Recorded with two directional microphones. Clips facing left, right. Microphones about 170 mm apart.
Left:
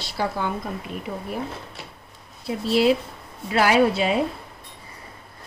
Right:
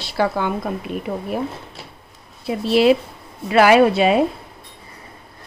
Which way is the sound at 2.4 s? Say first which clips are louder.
Right 4 dB; 70° right (ahead or behind).